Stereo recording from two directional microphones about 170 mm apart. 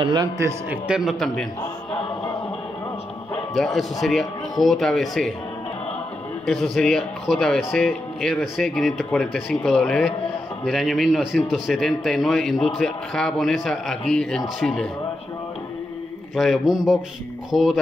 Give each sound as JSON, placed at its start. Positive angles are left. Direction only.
{"t": 0.0, "sound": "a man's voice", "side_deg": -25}
{"t": 0.7, "sound": "a man's voice", "side_deg": -5}
{"t": 1.9, "sound": "choir", "side_deg": 35}
{"t": 3.5, "sound": "a man's voice", "side_deg": 5}
{"t": 6.4, "sound": "a man's voice", "side_deg": 5}
{"t": 16.3, "sound": "a man's voice", "side_deg": 0}